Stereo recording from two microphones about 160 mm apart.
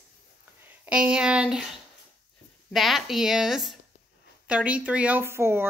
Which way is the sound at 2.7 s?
Centre (ahead or behind).